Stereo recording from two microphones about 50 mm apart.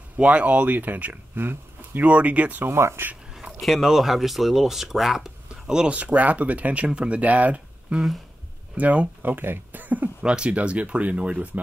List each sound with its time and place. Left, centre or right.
0.2 s speech: right
1.3 s a sound: right
2.0 s speech: right
2.7 s speech: right
3.6 s speech: centre
5.9 s speech: right
10.2 s speech: centre